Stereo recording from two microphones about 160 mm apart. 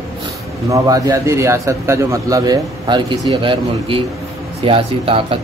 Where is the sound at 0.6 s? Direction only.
20° right (ahead or behind).